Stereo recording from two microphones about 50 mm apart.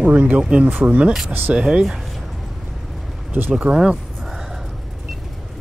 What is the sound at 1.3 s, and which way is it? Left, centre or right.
Speech, right.